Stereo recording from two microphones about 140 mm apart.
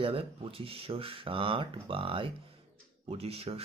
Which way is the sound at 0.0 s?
40° right (ahead or behind).